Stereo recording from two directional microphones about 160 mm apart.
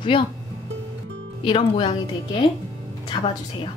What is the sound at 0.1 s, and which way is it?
Speech, 30° left (ahead or behind).